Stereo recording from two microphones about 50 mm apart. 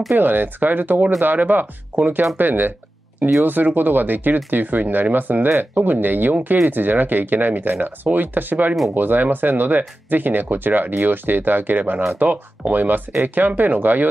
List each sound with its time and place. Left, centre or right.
0.1 s speech: right